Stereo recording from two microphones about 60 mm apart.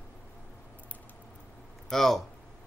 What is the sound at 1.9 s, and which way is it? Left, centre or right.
Speech, centre.